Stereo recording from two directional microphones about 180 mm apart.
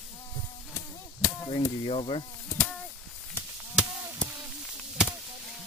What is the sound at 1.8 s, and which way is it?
Speech, 30° left (ahead or behind).